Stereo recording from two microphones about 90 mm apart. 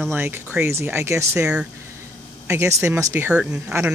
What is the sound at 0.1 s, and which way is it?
Speech, 25° right (ahead or behind).